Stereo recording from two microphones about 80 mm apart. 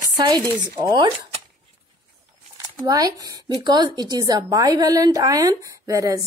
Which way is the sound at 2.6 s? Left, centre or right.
Right.